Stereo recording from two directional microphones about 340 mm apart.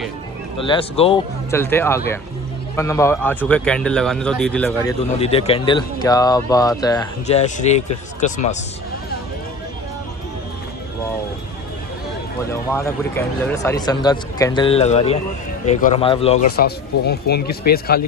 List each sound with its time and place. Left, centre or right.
0.6 s speech: centre
5.2 s speech: centre
12.7 s speech: centre; by 18.0 s left